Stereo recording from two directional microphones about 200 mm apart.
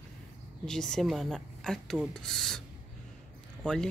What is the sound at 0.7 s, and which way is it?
Speech, centre (ahead or behind).